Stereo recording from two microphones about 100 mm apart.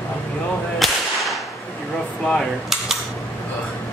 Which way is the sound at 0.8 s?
Centre (ahead or behind).